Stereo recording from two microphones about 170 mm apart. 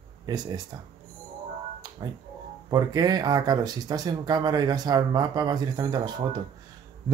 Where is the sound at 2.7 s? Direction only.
20° right (ahead or behind).